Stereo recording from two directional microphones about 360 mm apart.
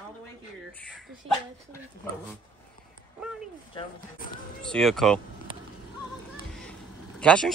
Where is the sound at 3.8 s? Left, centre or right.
Left.